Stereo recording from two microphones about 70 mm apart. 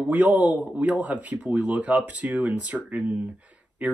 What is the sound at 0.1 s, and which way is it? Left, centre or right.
Speech, right.